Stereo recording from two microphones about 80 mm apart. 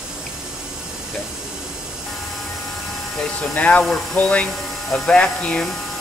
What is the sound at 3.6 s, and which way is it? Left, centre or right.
Speech, centre.